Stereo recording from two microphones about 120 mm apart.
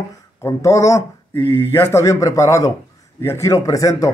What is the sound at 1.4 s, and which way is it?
Speech, 45° left (ahead or behind).